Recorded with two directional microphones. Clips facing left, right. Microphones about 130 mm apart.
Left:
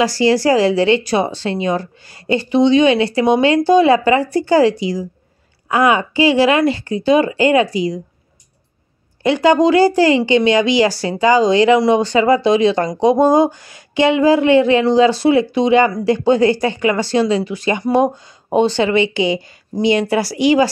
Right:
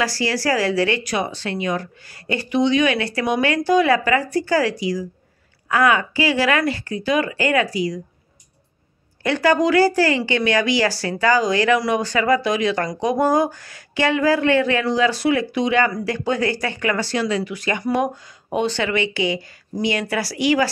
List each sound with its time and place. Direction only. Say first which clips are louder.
0.0 s a woman's voice: left 8 dB; 20° left (ahead or behind)
9.2 s a woman's voice: left 5 dB; 20° left (ahead or behind)